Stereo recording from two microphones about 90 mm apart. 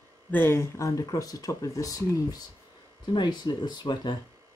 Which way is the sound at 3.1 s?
55° left (ahead or behind).